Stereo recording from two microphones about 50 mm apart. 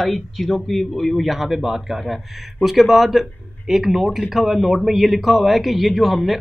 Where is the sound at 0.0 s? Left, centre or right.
Centre.